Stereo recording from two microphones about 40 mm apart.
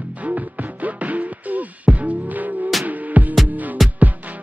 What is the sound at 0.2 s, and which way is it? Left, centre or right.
Music, right.